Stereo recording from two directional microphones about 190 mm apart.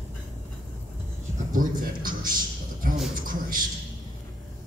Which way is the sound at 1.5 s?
45° right (ahead or behind).